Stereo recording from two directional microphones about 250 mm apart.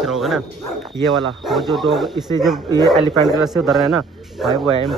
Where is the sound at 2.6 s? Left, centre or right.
Centre.